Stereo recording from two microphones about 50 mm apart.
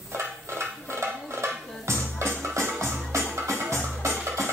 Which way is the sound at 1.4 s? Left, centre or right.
Right.